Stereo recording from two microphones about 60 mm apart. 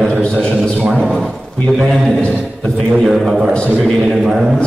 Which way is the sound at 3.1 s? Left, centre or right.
Centre.